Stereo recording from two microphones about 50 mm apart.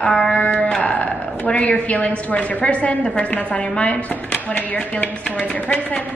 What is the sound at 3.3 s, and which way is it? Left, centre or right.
A woman's voice, left.